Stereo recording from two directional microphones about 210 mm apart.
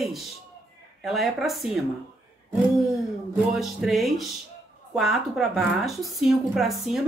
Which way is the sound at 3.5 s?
Centre (ahead or behind).